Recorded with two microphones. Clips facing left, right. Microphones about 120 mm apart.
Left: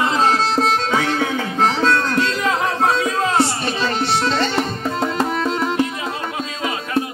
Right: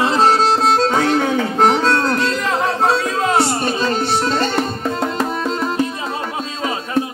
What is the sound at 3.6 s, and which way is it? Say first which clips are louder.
Music: right 3 dB; 45° right (ahead or behind).